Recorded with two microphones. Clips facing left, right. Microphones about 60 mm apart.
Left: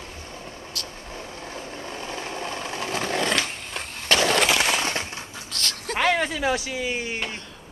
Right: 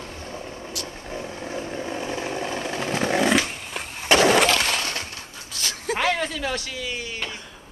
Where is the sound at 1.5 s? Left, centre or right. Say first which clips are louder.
Right 6 dB; centre.